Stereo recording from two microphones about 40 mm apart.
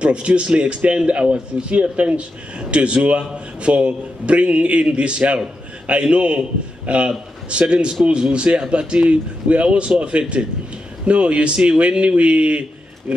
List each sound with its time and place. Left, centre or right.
0.0 s a man's voice: right